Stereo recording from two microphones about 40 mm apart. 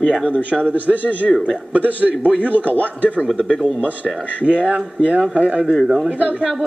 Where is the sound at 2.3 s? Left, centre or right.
Left.